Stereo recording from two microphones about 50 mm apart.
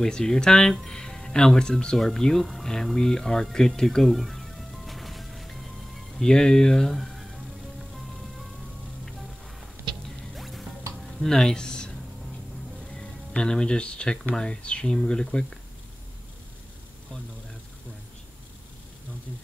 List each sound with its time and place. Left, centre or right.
0.0 s speech: centre
2.0 s a sound: centre
6.1 s speech: centre
10.0 s music: centre
11.1 s speech: centre
12.9 s speech: centre